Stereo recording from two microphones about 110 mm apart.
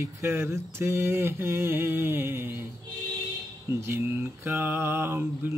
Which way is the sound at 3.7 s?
20° right (ahead or behind).